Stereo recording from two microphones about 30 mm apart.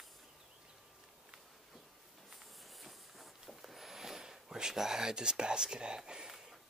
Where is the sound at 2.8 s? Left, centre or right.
Centre; by 6.3 s right.